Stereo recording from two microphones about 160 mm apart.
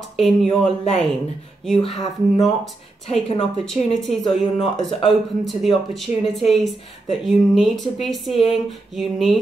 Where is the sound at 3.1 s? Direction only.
40° left (ahead or behind).